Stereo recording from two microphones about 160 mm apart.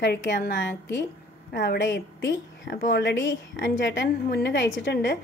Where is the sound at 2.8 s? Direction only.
90° left.